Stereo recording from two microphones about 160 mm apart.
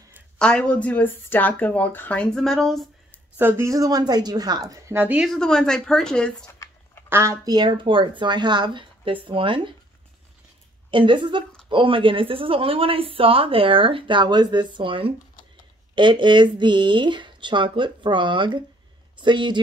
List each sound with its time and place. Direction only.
0.4 s speech: 5° left (ahead or behind)
3.3 s speech: 15° right (ahead or behind)
5.3 s speech: 5° left (ahead or behind)
7.1 s speech: 15° right (ahead or behind); by 9.8 s 30° right (ahead or behind)
10.9 s speech: 30° right (ahead or behind)